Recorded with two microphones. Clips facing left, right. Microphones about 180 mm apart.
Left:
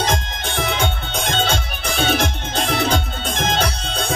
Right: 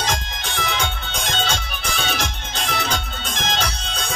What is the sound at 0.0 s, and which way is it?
Music, 55° left (ahead or behind).